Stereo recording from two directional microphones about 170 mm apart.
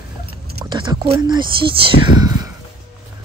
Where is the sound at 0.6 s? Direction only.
25° right (ahead or behind).